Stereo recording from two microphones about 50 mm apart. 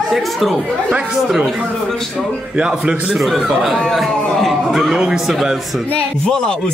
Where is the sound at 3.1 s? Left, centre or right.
Centre.